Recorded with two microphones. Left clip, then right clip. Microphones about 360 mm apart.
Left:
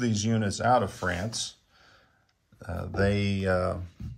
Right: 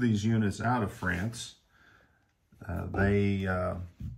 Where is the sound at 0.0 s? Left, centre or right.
Centre.